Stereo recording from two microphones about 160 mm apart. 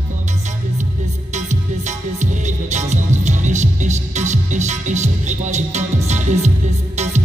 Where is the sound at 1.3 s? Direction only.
50° right (ahead or behind).